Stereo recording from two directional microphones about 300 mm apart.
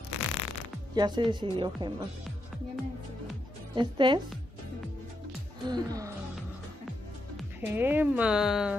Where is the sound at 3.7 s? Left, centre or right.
Centre.